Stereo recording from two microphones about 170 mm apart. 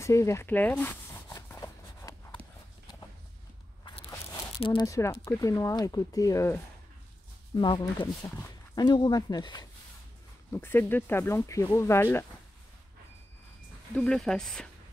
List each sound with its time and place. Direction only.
0.0 s speech: 15° left (ahead or behind)
1.3 s a sound: 20° left (ahead or behind)
4.1 s a sound: 15° left (ahead or behind)
4.6 s speech: 20° left (ahead or behind)
10.5 s speech: 15° left (ahead or behind)
13.9 s speech: 5° left (ahead or behind)